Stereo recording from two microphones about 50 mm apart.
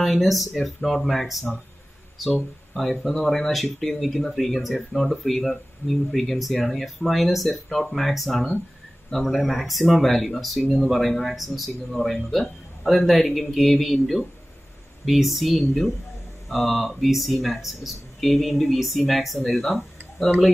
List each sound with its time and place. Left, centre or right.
0.0 s speech: centre